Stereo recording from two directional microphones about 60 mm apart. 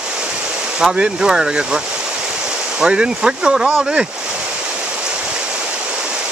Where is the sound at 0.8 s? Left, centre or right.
Centre.